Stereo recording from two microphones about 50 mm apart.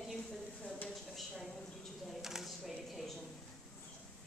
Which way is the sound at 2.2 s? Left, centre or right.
Centre.